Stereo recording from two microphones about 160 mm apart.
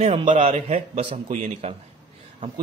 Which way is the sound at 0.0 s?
40° right (ahead or behind).